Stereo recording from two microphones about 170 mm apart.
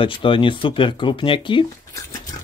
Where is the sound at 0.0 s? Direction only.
30° left (ahead or behind).